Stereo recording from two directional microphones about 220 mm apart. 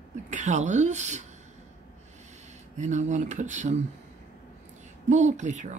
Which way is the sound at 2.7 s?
35° right (ahead or behind).